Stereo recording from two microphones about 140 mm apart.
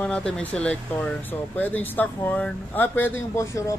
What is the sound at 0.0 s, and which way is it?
Speech, 10° left (ahead or behind).